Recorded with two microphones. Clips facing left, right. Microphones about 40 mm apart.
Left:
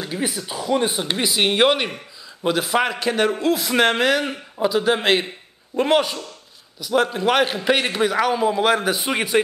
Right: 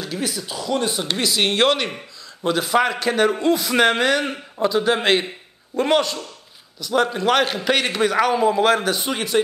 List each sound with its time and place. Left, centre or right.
0.0 s a man's voice: left; by 8.9 s centre
8.9 s speech: left